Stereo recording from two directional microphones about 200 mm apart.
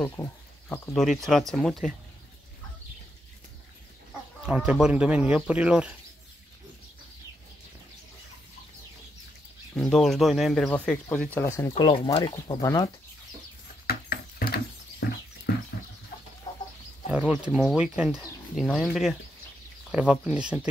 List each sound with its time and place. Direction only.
0.0 s speech: 15° left (ahead or behind)
0.9 s speech: centre (ahead or behind)
4.5 s speech: 5° right (ahead or behind)
9.8 s speech: centre (ahead or behind); by 12.9 s 15° left (ahead or behind)
13.8 s horse: 50° left (ahead or behind)
17.1 s speech: 5° right (ahead or behind)